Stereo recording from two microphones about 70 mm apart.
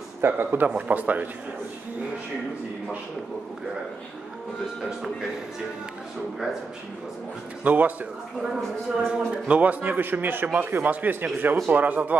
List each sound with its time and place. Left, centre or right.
0.2 s a man's voice: right
0.7 s a man's voice: centre
7.6 s a man's voice: right
9.1 s a man's voice: centre